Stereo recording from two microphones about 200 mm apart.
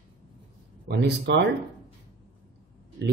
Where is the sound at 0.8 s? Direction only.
55° right (ahead or behind).